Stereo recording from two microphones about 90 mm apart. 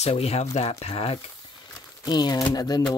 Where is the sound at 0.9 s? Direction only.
90° left.